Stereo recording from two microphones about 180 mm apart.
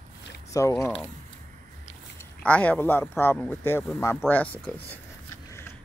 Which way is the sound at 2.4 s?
5° left (ahead or behind).